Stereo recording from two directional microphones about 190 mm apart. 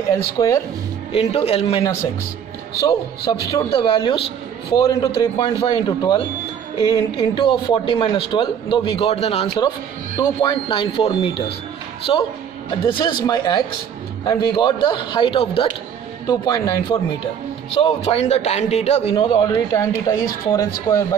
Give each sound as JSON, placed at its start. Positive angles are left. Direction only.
{"t": 0.1, "sound": "a man's voice", "side_deg": 20}
{"t": 1.1, "sound": "speech", "side_deg": 35}
{"t": 2.9, "sound": "a man's voice", "side_deg": 20}
{"t": 10.1, "sound": "a man's voice", "side_deg": 20}
{"t": 17.8, "sound": "a man's voice", "side_deg": 35}